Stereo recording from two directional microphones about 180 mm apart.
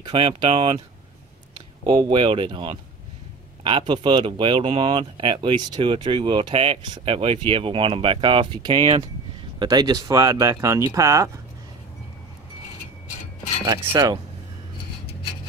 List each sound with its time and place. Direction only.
0.0 s speech: 25° right (ahead or behind)
1.9 s speech: 25° right (ahead or behind)
13.7 s speech: 20° right (ahead or behind)